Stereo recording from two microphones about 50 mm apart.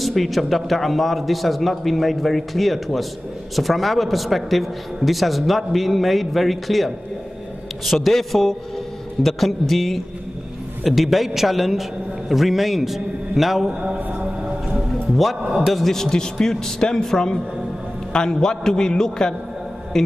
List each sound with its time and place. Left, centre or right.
0.0 s a man's voice: centre
14.2 s music: right
15.4 s a man's voice: centre
15.7 s a man's voice: centre